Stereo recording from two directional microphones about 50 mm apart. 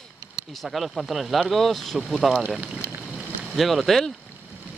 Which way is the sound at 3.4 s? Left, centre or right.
Centre.